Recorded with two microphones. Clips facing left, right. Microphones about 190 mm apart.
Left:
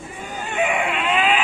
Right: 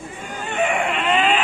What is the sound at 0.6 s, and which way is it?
Baby cry, 5° left (ahead or behind).